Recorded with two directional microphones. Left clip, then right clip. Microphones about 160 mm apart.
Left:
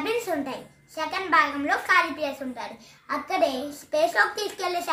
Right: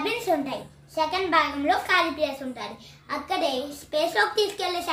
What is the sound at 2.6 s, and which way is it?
A child's voice, centre (ahead or behind).